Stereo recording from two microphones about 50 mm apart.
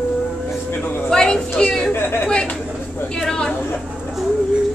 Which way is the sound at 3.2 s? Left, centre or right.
Centre.